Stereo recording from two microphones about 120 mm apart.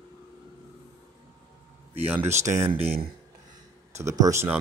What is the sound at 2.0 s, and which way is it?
Speech, 20° right (ahead or behind).